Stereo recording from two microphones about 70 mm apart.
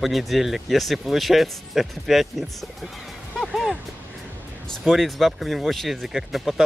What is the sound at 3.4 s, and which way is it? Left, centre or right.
Music, centre.